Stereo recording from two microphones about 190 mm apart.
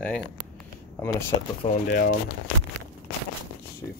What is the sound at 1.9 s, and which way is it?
Speech, 50° left (ahead or behind).